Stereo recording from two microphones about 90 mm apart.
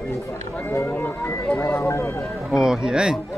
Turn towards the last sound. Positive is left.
turn(degrees=-10)  # may be behind; listen again after turning